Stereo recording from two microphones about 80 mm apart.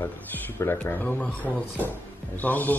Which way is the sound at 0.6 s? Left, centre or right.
Left.